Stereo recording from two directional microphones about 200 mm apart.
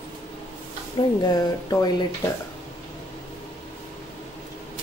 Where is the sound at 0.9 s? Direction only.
20° left (ahead or behind).